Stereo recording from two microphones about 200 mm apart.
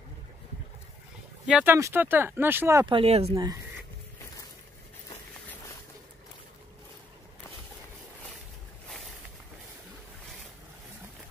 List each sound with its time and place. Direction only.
1.5 s speech: 10° right (ahead or behind)
2.9 s speech: 30° right (ahead or behind)